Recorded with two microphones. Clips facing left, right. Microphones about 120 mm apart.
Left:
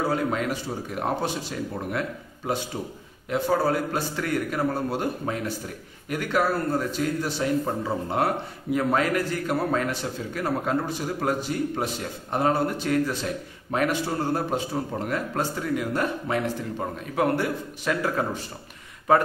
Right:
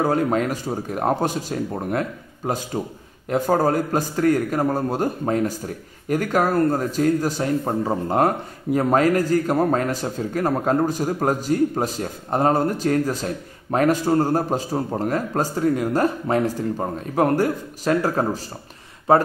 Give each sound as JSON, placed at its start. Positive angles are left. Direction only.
{"t": 0.0, "sound": "a man's voice", "side_deg": -45}